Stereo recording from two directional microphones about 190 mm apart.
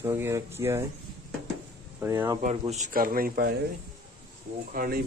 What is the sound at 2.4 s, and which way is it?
A man's voice, 40° right (ahead or behind).